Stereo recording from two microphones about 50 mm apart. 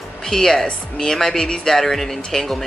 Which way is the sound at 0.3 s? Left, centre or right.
Centre.